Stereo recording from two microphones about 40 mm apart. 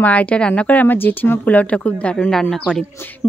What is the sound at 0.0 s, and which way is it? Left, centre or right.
Speech, left.